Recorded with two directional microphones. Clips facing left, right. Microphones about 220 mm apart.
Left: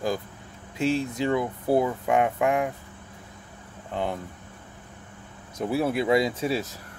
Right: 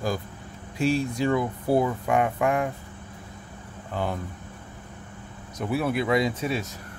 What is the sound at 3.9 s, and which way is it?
Speech, 20° left (ahead or behind).